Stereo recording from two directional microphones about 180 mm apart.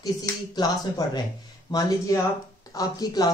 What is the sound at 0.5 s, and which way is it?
Speech, 20° left (ahead or behind).